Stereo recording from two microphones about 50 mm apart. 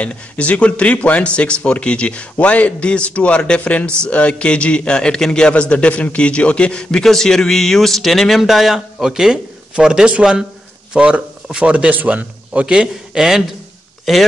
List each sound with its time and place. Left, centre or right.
0.0 s a man's voice: left; by 10.4 s centre
10.9 s a sound: centre
11.6 s a man's voice: right
14.1 s a man's voice: centre